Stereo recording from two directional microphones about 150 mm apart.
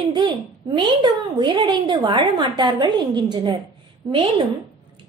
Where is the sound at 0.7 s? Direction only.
30° right (ahead or behind).